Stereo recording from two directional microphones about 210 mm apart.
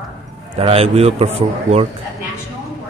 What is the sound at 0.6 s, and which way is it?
Speech, 30° right (ahead or behind).